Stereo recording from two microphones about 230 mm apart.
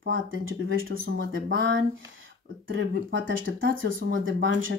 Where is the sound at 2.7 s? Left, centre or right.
Right.